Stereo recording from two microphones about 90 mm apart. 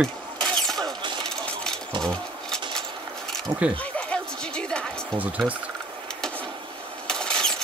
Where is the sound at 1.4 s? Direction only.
10° left (ahead or behind).